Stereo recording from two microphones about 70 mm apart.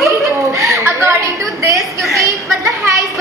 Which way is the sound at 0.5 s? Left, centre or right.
Right.